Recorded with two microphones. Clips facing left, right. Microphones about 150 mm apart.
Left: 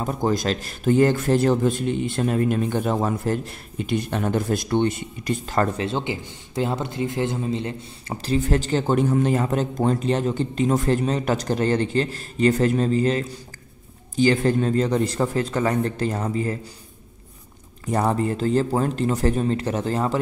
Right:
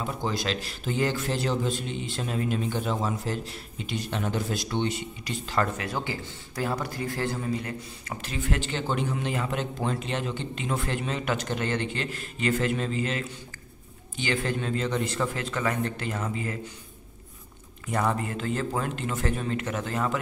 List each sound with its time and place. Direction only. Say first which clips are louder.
0.0 s speech: left 7 dB; 45° left (ahead or behind)
5.8 s a man's voice: left 6 dB; 25° left (ahead or behind)
17.8 s a man's voice: left 6 dB; 35° left (ahead or behind)